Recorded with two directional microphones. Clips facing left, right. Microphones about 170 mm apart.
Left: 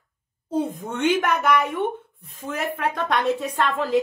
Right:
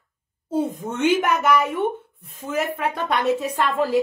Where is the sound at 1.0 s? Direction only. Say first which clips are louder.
Right 1 dB; centre (ahead or behind).